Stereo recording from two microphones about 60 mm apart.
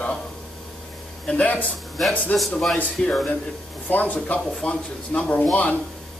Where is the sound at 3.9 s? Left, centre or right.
Left.